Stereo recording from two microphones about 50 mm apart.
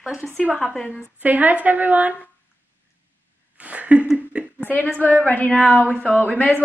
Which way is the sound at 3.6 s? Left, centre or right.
Right.